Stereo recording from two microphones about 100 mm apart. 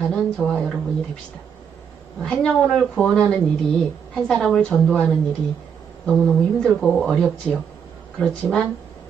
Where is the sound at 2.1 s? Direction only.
5° left (ahead or behind).